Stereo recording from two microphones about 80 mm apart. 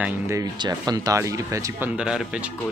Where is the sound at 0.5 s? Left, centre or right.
Right.